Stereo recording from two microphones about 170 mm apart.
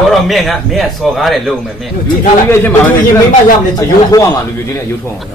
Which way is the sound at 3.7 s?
20° left (ahead or behind).